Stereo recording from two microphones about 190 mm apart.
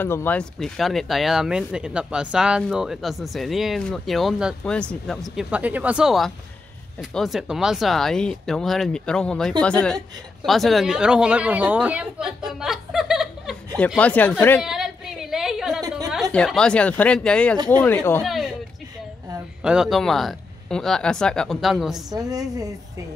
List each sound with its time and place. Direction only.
0.0 s speech: 10° left (ahead or behind); by 12.4 s 5° right (ahead or behind)
12.4 s chuckle: centre (ahead or behind)
13.9 s speech: 10° left (ahead or behind)
14.6 s a sound: centre (ahead or behind)
16.3 s speech: 5° left (ahead or behind)
18.2 s speech: centre (ahead or behind)
19.6 s speech: 5° right (ahead or behind)
22.1 s a woman's voice: 20° right (ahead or behind)